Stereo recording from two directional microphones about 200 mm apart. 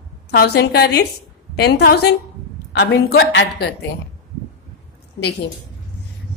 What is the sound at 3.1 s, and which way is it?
Speech, 60° left (ahead or behind).